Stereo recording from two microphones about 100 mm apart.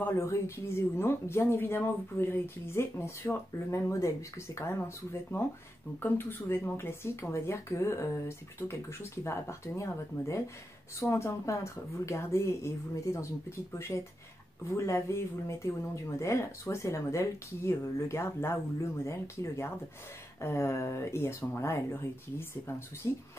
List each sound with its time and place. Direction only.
0.0 s speech: 30° left (ahead or behind)
6.4 s speech: 25° left (ahead or behind)
23.0 s speech: 30° left (ahead or behind)